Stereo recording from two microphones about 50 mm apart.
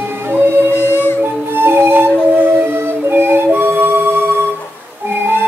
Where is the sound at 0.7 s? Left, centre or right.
Left.